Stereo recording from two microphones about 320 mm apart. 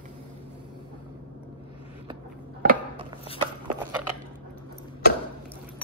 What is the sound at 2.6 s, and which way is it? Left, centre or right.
Chopping, right.